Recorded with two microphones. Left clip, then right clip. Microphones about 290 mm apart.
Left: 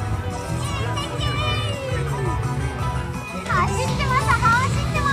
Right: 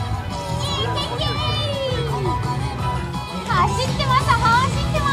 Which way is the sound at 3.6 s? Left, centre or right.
Right.